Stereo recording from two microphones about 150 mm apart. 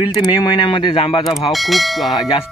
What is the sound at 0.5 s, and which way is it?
Speech, 35° left (ahead or behind).